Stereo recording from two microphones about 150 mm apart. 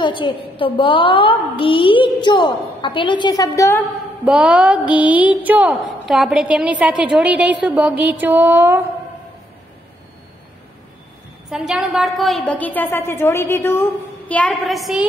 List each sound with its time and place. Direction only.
0.0 s a woman's voice: 35° left (ahead or behind)
4.2 s a woman's voice: 10° right (ahead or behind)
11.5 s a woman's voice: 5° right (ahead or behind); by 13.8 s 15° left (ahead or behind)
14.3 s a woman's voice: 5° left (ahead or behind)